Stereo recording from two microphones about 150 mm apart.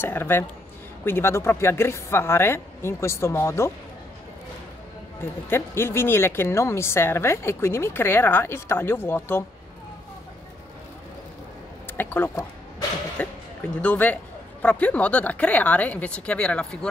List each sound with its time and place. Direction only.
0.0 s speech: 15° left (ahead or behind)
5.2 s speech: 15° left (ahead or behind)
12.0 s speech: 15° left (ahead or behind)